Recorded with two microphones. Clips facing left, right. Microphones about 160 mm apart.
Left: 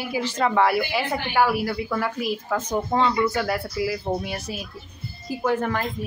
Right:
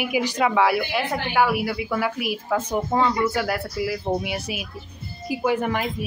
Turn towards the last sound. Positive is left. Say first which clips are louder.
# right 1 dB
turn(degrees=-10)  # may be behind; listen again after turning